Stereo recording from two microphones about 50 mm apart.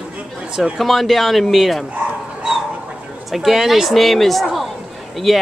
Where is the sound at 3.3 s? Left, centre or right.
Centre.